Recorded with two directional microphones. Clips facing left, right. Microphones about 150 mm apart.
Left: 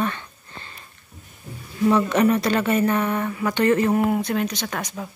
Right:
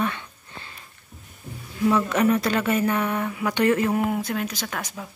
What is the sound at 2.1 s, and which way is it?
Speech, centre (ahead or behind).